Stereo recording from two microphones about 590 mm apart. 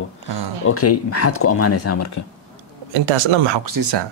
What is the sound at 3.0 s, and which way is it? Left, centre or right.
Speech, right.